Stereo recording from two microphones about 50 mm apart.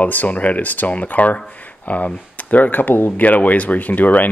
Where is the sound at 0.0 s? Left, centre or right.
Left.